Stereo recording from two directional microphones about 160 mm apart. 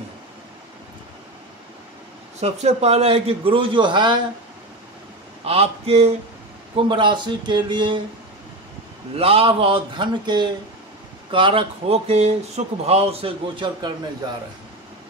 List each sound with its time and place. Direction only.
2.4 s speech: 40° right (ahead or behind)
5.4 s speech: 40° right (ahead or behind)
6.9 s speech: 30° right (ahead or behind)
9.1 s speech: 35° right (ahead or behind)